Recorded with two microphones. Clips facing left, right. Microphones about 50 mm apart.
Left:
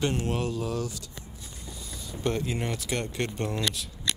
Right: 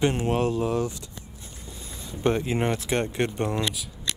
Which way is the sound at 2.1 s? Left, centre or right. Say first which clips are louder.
Right 5 dB; right.